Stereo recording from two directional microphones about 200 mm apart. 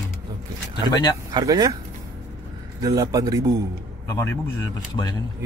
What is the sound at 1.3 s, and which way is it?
Speech, 20° right (ahead or behind).